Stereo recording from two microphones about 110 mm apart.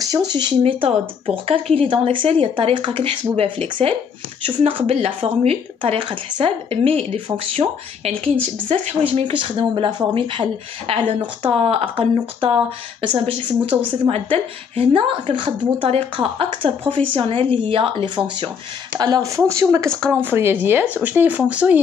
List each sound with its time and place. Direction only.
0.0 s a woman's voice: 35° right (ahead or behind); by 5.6 s 65° right (ahead or behind)
5.8 s speech: 50° right (ahead or behind)
8.2 s a woman's voice: 70° right (ahead or behind)
9.2 s a woman's voice: 50° right (ahead or behind); by 21.7 s 10° right (ahead or behind)